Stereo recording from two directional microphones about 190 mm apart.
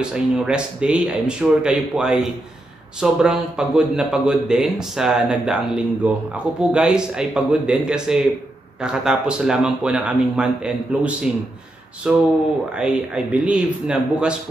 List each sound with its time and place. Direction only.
0.0 s a man's voice: 5° right (ahead or behind)